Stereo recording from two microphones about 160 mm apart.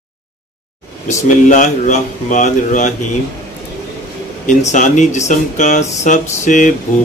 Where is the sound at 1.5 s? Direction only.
50° left (ahead or behind).